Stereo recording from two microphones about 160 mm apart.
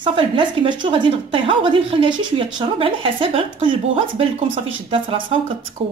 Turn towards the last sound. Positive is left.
turn(degrees=-35)  # may be behind; listen again after turning